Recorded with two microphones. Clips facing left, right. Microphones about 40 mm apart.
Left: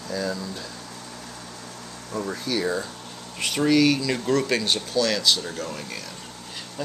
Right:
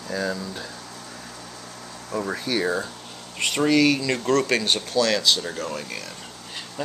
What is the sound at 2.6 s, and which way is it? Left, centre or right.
Speech, centre.